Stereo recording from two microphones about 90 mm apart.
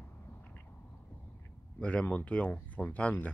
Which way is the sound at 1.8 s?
15° left (ahead or behind).